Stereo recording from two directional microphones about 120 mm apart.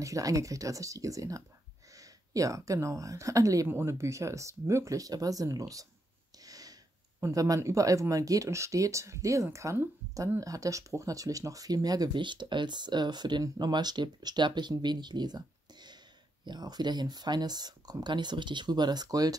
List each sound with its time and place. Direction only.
0.0 s speech: 30° right (ahead or behind)